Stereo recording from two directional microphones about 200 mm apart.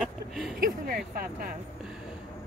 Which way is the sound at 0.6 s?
45° right (ahead or behind).